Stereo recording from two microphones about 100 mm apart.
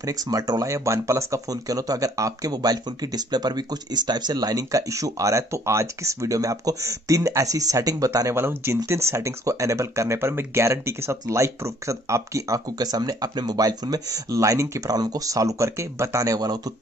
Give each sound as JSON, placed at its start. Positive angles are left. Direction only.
{"t": 0.0, "sound": "speech", "side_deg": -35}
{"t": 8.4, "sound": "speech", "side_deg": -25}